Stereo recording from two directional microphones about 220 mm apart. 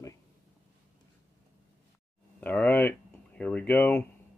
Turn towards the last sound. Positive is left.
turn(degrees=10)  # may be behind; listen again after turning